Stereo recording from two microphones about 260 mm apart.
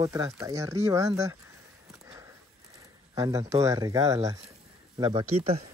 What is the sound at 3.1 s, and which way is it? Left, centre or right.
Speech, centre.